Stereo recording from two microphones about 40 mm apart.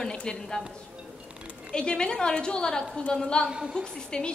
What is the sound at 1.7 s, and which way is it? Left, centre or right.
A woman's voice, left.